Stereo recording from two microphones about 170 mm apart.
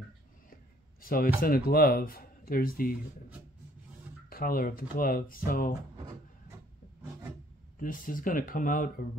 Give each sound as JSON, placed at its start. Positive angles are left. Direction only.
{"t": 1.0, "sound": "speech", "side_deg": 60}
{"t": 4.3, "sound": "speech", "side_deg": 60}
{"t": 7.8, "sound": "speech", "side_deg": 55}